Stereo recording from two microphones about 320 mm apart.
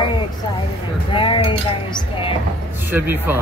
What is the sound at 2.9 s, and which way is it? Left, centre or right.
Speech, centre.